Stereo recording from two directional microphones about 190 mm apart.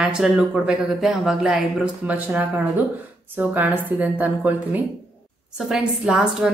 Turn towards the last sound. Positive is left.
turn(degrees=-5)  # may be behind; listen again after turning